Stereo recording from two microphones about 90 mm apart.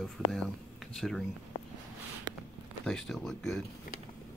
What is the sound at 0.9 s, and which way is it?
Speech, centre (ahead or behind).